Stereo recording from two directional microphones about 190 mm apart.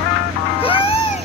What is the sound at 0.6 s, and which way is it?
Music, 30° left (ahead or behind).